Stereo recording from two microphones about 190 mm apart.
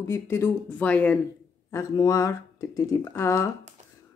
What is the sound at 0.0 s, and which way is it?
Speech, 15° left (ahead or behind).